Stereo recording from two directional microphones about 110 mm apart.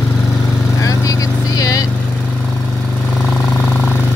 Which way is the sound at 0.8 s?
30° left (ahead or behind).